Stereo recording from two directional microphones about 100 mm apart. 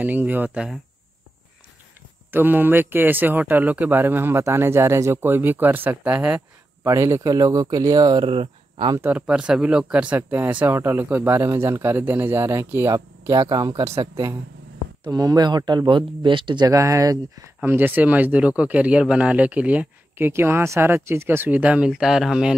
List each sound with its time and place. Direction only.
0.0 s speech: 15° right (ahead or behind)
2.3 s speech: 20° right (ahead or behind)
6.8 s speech: 30° right (ahead or behind)
8.3 s speech: 60° right (ahead or behind)
9.1 s speech: 10° right (ahead or behind); by 16.6 s 55° right (ahead or behind)
16.6 s speech: 35° right (ahead or behind)
17.6 s speech: 20° right (ahead or behind)